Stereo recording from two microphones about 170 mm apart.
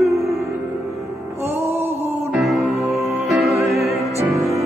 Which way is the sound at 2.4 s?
Centre (ahead or behind).